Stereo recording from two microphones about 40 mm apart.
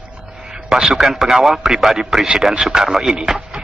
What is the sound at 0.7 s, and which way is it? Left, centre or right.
Speech, centre.